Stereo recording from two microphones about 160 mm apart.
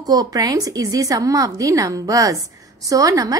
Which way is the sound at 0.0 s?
25° right (ahead or behind).